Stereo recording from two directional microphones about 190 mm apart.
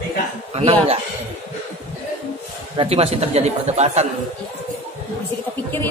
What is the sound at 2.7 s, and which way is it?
A man's voice, 30° right (ahead or behind).